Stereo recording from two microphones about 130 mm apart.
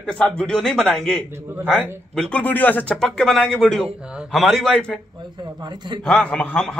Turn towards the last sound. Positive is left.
turn(degrees=5)  # may be behind; listen again after turning